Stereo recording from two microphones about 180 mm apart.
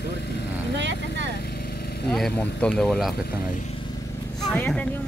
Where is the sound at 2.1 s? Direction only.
5° left (ahead or behind).